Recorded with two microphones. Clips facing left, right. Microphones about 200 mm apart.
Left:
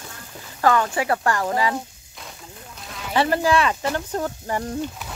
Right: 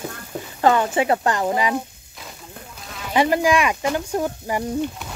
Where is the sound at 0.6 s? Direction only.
20° right (ahead or behind).